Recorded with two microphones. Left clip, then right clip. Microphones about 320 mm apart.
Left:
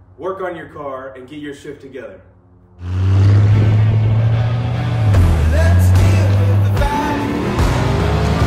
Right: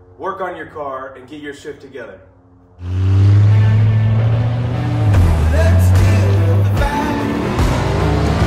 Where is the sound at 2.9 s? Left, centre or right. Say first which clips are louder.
Even; centre.